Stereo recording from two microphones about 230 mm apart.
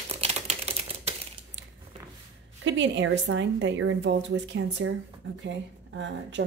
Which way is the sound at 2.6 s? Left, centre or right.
Right.